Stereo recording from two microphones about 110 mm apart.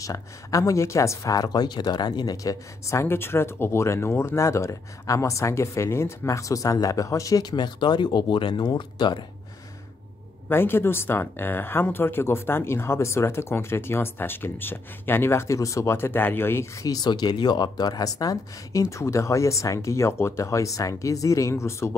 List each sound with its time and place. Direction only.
0.0 s speech: 30° left (ahead or behind)
10.5 s speech: 20° left (ahead or behind)